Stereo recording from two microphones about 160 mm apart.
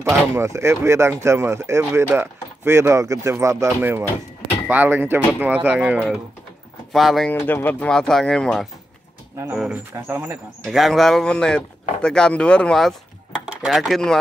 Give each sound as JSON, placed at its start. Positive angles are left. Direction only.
{"t": 0.3, "sound": "speech", "side_deg": -15}
{"t": 7.3, "sound": "speech", "side_deg": 10}
{"t": 10.6, "sound": "speech", "side_deg": 0}